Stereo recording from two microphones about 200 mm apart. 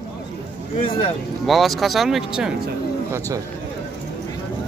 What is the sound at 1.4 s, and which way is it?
Speech, centre (ahead or behind).